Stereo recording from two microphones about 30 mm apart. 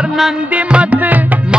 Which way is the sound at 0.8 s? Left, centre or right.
Right.